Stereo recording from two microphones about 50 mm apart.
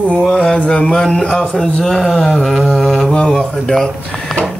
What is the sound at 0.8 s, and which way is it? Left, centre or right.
Speech, centre.